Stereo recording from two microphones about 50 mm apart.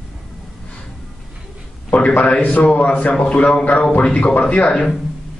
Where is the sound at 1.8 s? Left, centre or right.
Left.